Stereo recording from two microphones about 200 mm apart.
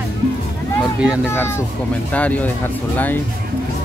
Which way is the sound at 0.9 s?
5° right (ahead or behind).